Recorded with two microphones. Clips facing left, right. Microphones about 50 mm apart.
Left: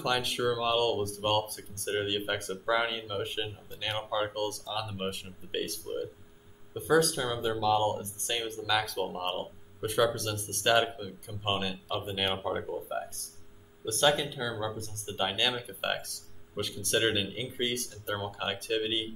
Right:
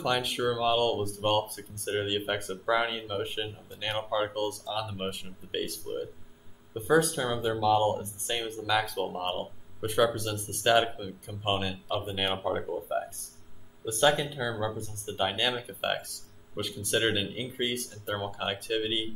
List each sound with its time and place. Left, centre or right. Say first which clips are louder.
0.0 s speech: right 1 dB; centre